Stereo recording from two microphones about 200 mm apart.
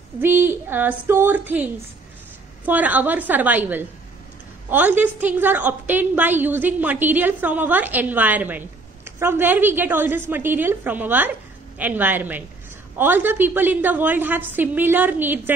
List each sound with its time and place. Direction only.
0.2 s a woman's voice: 10° right (ahead or behind)